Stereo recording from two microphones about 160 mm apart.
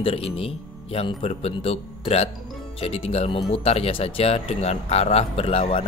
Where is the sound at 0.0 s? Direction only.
35° left (ahead or behind).